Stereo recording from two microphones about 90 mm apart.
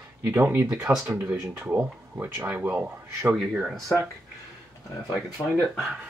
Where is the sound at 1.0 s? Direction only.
15° right (ahead or behind).